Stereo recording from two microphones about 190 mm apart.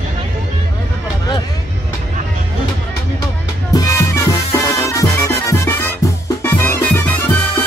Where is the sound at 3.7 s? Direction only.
15° left (ahead or behind).